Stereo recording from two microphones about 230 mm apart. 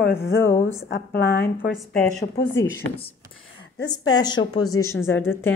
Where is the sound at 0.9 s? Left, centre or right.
Left.